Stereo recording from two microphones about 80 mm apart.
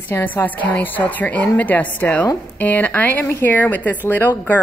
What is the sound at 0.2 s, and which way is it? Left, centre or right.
A woman's voice, left.